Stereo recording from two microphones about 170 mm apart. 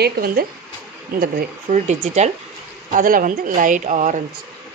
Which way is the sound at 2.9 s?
55° right (ahead or behind).